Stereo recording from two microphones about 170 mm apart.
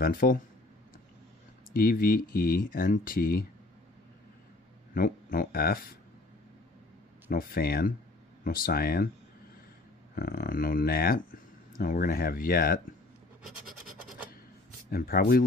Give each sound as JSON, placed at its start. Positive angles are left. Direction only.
{"t": 0.0, "sound": "speech", "side_deg": 60}
{"t": 1.7, "sound": "speech", "side_deg": 60}
{"t": 4.9, "sound": "speech", "side_deg": 60}
{"t": 7.2, "sound": "speech", "side_deg": 60}
{"t": 10.1, "sound": "speech", "side_deg": 60}
{"t": 13.9, "sound": "scratch", "side_deg": -10}
{"t": 14.9, "sound": "speech", "side_deg": 60}